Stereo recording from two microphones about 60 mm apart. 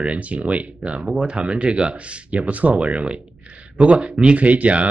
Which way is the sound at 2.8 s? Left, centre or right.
Centre.